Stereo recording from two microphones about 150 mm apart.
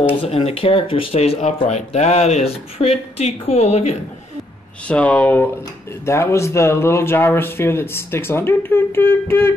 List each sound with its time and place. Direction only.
0.2 s speech: 40° left (ahead or behind)
4.8 s speech: 10° left (ahead or behind)